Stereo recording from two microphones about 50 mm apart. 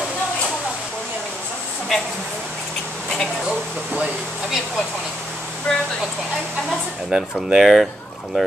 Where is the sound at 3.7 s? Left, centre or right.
Centre.